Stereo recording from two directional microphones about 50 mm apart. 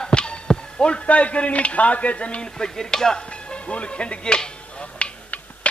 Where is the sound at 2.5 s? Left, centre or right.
Centre.